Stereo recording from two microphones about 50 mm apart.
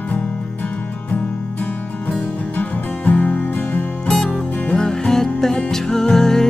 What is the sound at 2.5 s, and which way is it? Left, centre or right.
Music, left.